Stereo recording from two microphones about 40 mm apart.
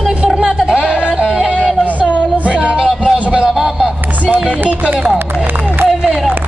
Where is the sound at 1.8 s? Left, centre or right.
Right.